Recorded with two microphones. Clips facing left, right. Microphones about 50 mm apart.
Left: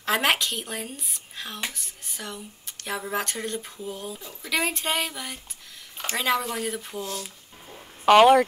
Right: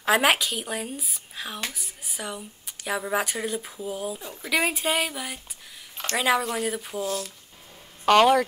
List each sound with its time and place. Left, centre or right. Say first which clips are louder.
0.0 s speech: right 2 dB; centre
4.5 s speech: right 2 dB; centre
8.0 s speech: left 3 dB; centre